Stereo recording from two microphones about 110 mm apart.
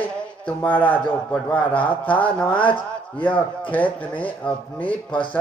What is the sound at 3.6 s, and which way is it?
A man's voice, 15° left (ahead or behind).